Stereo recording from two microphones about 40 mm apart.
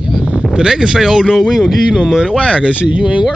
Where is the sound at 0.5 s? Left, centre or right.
Centre.